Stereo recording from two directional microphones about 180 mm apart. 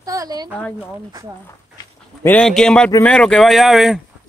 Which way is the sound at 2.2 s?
10° left (ahead or behind).